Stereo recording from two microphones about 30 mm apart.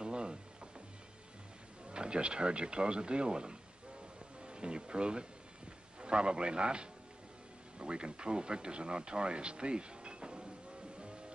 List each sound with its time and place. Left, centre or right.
0.0 s a sound: right
1.9 s a man's voice: right
11.0 s music: right